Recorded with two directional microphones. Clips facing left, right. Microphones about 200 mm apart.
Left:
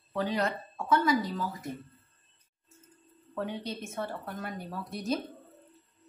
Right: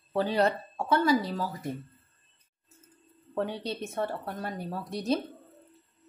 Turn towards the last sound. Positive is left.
turn(degrees=-30)  # may be behind; listen again after turning